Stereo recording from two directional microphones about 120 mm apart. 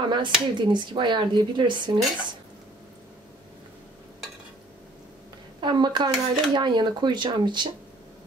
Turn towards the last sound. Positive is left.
turn(degrees=-40)  # may be behind; listen again after turning